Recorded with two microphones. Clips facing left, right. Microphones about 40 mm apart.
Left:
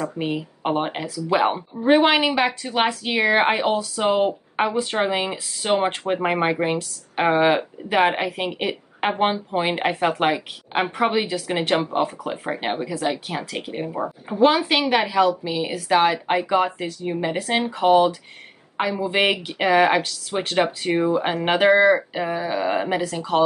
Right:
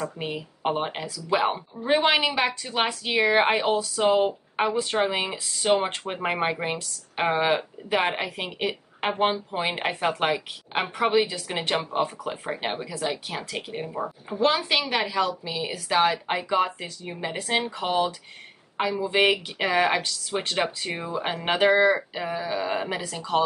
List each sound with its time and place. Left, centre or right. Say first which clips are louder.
0.2 s a woman's voice: left 4 dB; centre